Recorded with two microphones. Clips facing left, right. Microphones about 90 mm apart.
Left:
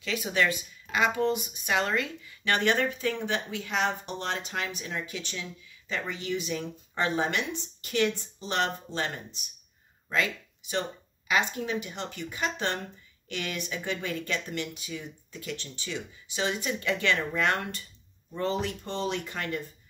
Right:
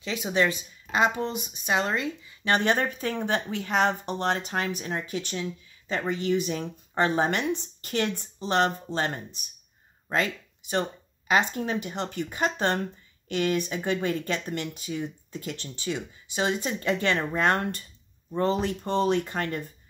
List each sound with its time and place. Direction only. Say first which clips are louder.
0.0 s speech: right 2 dB; 25° right (ahead or behind)